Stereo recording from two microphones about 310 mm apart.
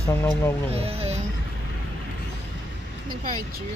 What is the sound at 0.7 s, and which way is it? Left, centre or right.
Speech, centre.